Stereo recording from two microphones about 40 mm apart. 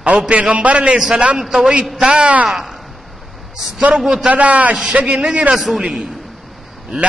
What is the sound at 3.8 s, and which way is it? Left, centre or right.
Speech, right.